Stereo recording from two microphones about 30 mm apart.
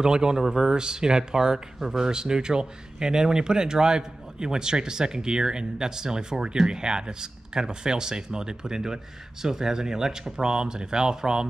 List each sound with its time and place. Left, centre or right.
0.0 s speech: right